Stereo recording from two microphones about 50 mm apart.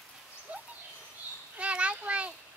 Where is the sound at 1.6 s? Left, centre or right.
Right.